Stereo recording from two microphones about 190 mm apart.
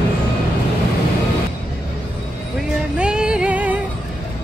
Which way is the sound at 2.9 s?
5° right (ahead or behind).